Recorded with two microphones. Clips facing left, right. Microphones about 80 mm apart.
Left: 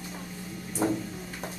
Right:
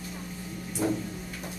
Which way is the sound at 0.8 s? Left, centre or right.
Left.